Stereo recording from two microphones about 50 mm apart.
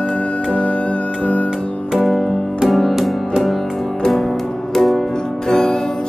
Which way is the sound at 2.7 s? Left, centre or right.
Centre.